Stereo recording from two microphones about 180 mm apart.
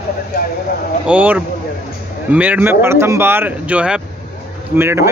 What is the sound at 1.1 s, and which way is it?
A man's voice, 5° right (ahead or behind).